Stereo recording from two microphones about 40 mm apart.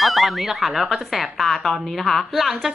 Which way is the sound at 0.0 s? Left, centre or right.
Centre.